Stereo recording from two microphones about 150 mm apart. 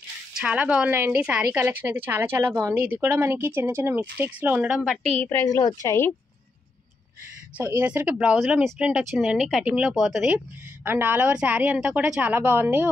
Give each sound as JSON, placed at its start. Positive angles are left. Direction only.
{"t": 0.4, "sound": "speech", "side_deg": -5}
{"t": 5.2, "sound": "a woman's voice", "side_deg": 15}
{"t": 7.5, "sound": "speech", "side_deg": -10}